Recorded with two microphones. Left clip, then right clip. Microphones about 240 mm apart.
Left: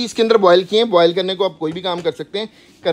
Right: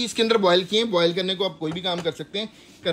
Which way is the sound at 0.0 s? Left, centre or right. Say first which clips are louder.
Left 7 dB; centre.